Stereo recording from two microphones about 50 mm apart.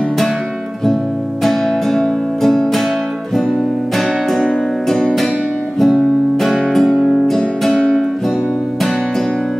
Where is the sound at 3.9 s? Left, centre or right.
Centre.